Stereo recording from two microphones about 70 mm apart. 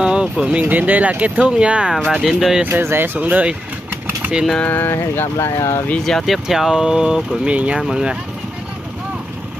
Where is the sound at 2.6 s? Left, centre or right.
Right.